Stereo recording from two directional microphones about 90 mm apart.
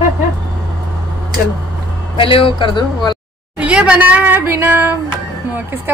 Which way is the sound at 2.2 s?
75° left (ahead or behind).